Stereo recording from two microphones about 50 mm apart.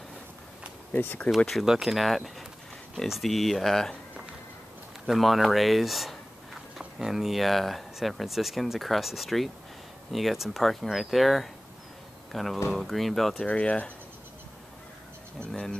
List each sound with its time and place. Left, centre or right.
0.9 s speech: left
1.6 s speech: centre
5.0 s speech: centre
13.4 s speech: left